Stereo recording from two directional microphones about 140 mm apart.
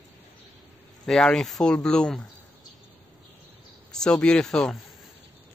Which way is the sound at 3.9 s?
5° left (ahead or behind).